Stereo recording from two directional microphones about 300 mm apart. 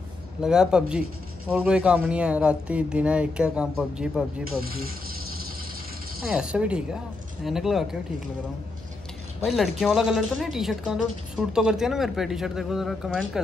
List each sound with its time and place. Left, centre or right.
0.4 s a woman's voice: centre
4.6 s vehicle: right
6.2 s a woman's voice: centre
9.4 s a woman's voice: centre